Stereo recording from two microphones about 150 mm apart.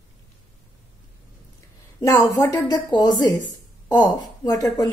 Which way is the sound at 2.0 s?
20° left (ahead or behind).